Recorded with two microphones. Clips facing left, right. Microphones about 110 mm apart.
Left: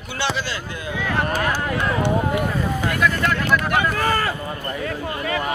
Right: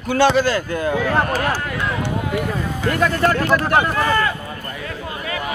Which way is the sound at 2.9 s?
40° right (ahead or behind).